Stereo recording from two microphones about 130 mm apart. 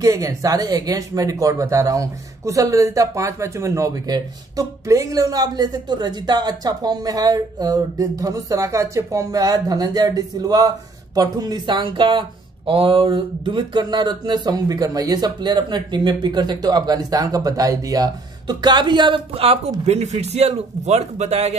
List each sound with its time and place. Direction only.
0.0 s speech: 25° right (ahead or behind); by 21.5 s 55° right (ahead or behind)